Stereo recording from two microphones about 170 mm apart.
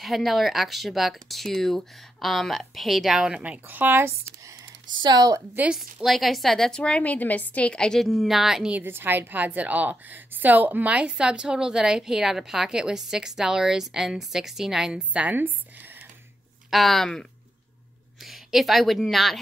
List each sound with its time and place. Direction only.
0.0 s a woman's voice: centre (ahead or behind); by 5.6 s 20° right (ahead or behind)
5.6 s a woman's voice: 5° right (ahead or behind)
16.7 s a woman's voice: centre (ahead or behind)